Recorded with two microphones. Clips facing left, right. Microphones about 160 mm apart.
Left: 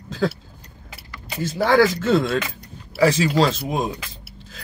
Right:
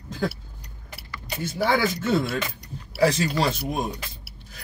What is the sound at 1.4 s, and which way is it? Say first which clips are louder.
Speech: left 6 dB; 90° left.